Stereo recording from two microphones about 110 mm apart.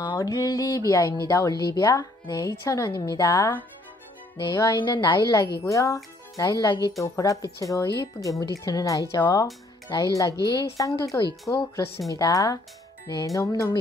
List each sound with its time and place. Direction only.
0.0 s speech: 40° left (ahead or behind)
4.7 s speech: 45° left (ahead or behind)
5.6 s speech: 30° left (ahead or behind)